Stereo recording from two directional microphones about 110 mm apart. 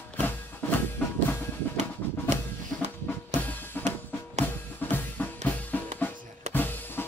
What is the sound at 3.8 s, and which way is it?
Drum kit, 15° left (ahead or behind).